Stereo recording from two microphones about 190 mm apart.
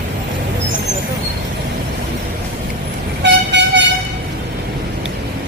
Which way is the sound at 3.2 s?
65° right (ahead or behind).